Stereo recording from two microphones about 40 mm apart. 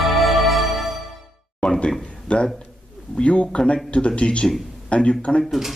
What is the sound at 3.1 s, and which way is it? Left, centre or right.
Speech, left.